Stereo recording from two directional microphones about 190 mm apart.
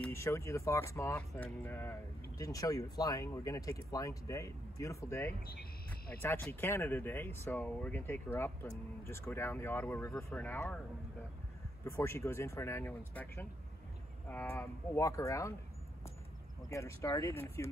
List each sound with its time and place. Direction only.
0.0 s speech: 15° left (ahead or behind)
11.8 s speech: 15° left (ahead or behind)
16.6 s speech: 15° left (ahead or behind)